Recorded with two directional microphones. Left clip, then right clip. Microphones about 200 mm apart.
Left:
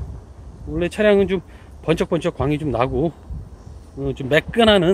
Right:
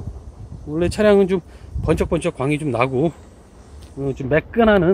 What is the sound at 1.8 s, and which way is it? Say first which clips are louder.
Speech: even; 5° right (ahead or behind).